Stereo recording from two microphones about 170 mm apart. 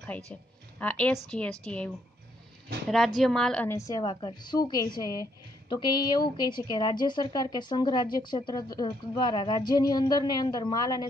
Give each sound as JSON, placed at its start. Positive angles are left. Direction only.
{"t": 0.3, "sound": "a woman's voice", "side_deg": 5}
{"t": 3.2, "sound": "a woman's voice", "side_deg": 5}